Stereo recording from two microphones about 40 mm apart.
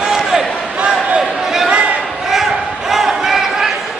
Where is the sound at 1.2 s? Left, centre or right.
Centre.